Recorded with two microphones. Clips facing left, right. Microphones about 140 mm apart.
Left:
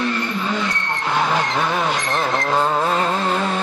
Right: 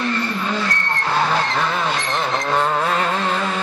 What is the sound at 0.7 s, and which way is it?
Vehicle, 5° left (ahead or behind).